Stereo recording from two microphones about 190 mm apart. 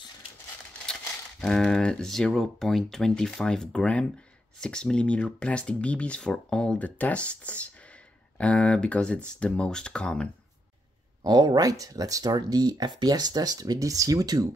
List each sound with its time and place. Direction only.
1.4 s speech: 5° left (ahead or behind)
11.2 s speech: 20° right (ahead or behind)